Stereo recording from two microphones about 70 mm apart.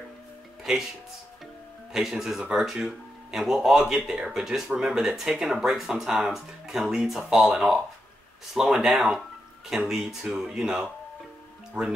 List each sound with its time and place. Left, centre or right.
0.7 s speech: centre
1.9 s speech: centre
11.7 s speech: right